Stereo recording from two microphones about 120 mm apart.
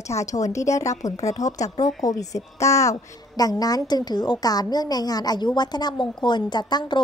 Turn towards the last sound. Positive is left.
turn(degrees=40)  # may be behind; listen again after turning